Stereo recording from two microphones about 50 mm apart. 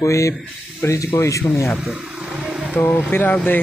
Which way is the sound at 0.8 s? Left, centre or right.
Left.